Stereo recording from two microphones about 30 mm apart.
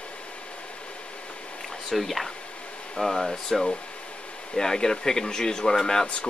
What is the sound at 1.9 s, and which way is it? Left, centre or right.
Speech, centre.